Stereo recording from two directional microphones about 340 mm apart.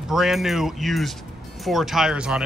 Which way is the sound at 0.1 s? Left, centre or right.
Centre.